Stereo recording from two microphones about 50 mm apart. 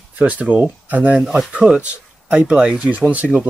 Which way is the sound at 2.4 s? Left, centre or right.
Centre.